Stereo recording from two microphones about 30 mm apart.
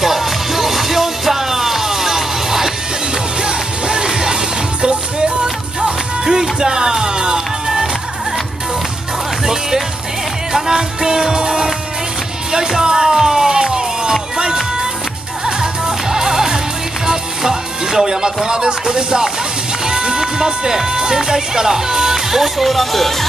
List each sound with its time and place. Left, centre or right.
0.0 s music: centre
3.4 s music: right
10.5 s music: centre
12.8 s music: right
18.9 s speech: right; by 23.1 s centre